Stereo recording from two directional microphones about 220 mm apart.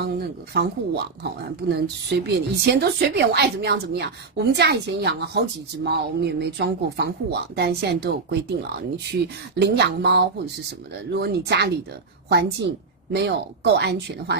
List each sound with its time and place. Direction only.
0.6 s speech: 50° right (ahead or behind)
9.6 s speech: 50° right (ahead or behind)